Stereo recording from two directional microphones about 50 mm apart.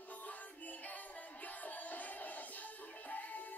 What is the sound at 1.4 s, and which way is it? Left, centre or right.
Music, left.